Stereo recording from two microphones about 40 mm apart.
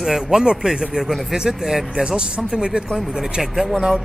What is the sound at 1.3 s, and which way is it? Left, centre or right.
A man's voice, centre.